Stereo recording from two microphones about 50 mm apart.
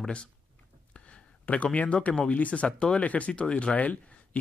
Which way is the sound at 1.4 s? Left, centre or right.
Left.